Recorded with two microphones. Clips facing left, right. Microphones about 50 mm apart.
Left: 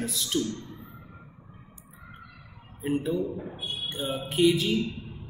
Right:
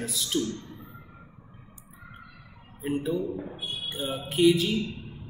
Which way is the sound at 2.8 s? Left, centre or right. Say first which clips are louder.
Left 1 dB; centre.